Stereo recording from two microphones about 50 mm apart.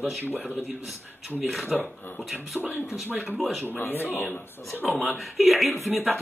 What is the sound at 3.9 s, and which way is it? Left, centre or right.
Speech, left.